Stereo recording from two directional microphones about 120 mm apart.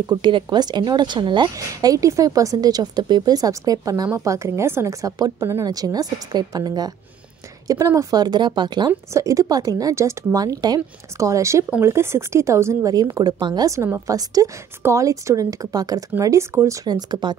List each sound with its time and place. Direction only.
0.0 s speech: 35° right (ahead or behind)
9.1 s a woman's voice: 25° right (ahead or behind)
12.9 s a woman's voice: 35° right (ahead or behind)
16.9 s speech: 40° right (ahead or behind)